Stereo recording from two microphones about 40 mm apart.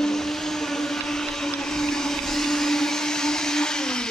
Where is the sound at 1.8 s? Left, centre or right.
Centre.